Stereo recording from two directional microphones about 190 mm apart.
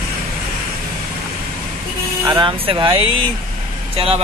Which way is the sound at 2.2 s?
20° right (ahead or behind).